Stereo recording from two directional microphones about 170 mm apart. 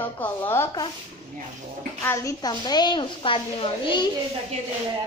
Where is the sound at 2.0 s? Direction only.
15° left (ahead or behind).